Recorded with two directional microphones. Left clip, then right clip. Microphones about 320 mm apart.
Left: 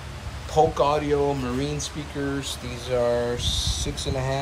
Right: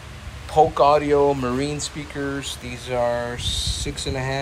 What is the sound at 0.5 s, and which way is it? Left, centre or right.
Speech, centre.